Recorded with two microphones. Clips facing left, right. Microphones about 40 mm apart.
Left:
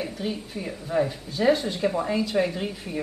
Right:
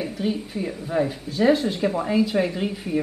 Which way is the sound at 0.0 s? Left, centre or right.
Centre.